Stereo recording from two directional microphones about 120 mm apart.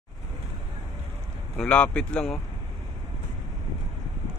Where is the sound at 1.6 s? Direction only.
10° left (ahead or behind).